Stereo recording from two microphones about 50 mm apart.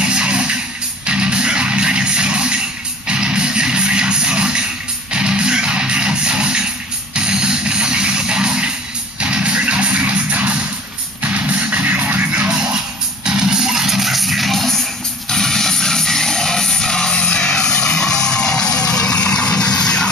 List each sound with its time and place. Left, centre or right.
0.0 s music: centre
12.4 s music: centre